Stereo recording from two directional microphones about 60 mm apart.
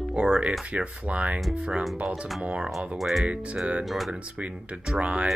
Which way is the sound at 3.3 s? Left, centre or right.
Right.